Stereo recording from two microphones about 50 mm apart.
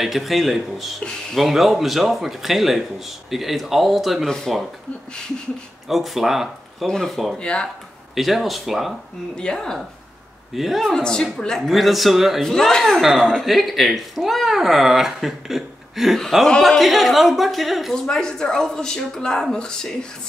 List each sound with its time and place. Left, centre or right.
0.0 s speech: centre
4.3 s speech: centre
5.9 s speech: centre
6.9 s speech: centre
8.1 s speech: centre
9.4 s speech: centre
10.5 s speech: centre
11.0 s speech: centre
12.4 s speech: centre
13.5 s speech: centre
17.9 s speech: centre